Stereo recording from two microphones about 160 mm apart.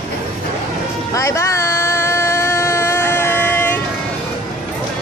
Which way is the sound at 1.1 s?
20° left (ahead or behind).